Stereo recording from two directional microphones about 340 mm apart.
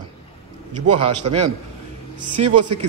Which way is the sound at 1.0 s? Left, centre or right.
Right.